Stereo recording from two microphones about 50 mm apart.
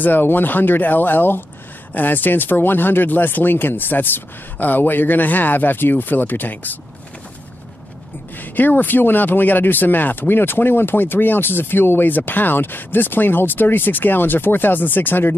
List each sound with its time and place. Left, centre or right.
0.0 s speech: left
8.4 s speech: left